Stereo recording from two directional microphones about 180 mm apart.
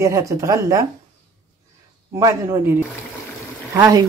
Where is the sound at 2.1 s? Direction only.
15° right (ahead or behind).